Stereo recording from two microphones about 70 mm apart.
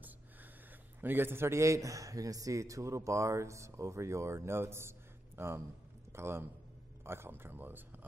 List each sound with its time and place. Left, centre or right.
1.0 s a man's voice: right